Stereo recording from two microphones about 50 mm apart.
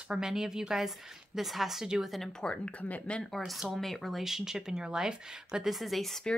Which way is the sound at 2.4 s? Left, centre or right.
Left.